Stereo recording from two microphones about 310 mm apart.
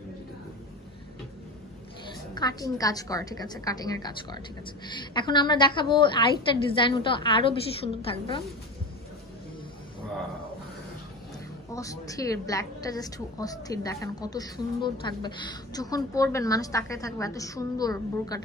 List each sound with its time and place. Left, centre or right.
2.3 s a woman's voice: centre
11.7 s a woman's voice: centre